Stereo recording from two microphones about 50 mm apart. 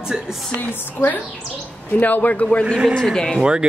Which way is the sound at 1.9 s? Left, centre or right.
Left.